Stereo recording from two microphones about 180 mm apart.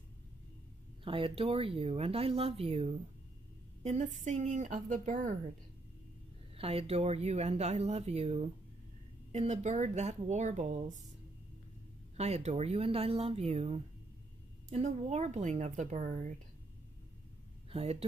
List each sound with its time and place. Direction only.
1.0 s speech: 30° right (ahead or behind)
4.2 s a woman's voice: 40° right (ahead or behind)
6.5 s speech: 35° right (ahead or behind)
12.2 s speech: 35° right (ahead or behind)
17.6 s speech: 35° right (ahead or behind)